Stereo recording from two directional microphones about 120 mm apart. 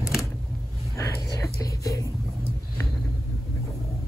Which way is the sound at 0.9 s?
25° left (ahead or behind).